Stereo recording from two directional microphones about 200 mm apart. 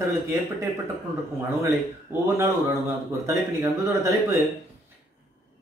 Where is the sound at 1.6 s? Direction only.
10° right (ahead or behind).